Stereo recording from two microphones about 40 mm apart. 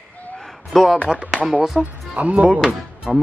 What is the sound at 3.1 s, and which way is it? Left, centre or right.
Speech, centre.